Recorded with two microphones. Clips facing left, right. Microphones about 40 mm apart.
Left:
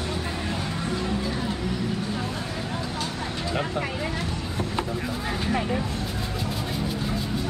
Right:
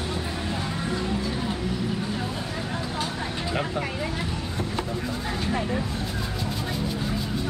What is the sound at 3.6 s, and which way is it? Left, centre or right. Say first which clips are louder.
Vehicle: even; centre.